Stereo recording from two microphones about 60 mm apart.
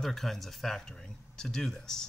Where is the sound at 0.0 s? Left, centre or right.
Centre.